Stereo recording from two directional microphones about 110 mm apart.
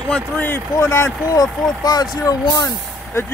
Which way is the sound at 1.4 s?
40° left (ahead or behind).